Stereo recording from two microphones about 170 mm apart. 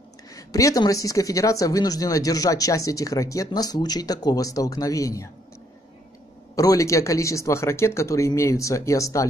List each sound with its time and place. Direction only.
0.3 s speech: 20° left (ahead or behind)
6.5 s speech: 20° left (ahead or behind)